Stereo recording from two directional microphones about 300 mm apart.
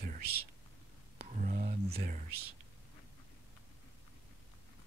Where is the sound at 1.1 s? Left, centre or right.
Right.